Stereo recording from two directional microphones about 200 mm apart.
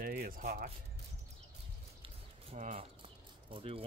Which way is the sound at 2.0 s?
30° right (ahead or behind).